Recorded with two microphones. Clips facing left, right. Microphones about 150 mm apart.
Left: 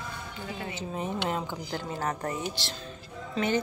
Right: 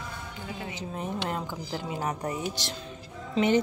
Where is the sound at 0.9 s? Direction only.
Centre (ahead or behind).